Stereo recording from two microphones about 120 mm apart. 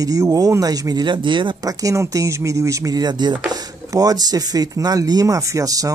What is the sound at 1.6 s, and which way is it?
Speech, 25° right (ahead or behind).